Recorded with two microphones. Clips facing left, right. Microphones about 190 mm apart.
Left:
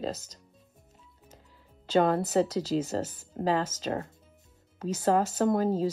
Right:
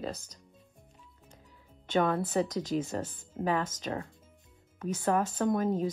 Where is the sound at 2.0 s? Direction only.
25° left (ahead or behind).